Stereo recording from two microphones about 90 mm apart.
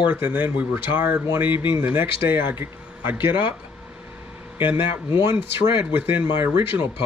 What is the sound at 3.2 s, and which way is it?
Speech, 65° left (ahead or behind).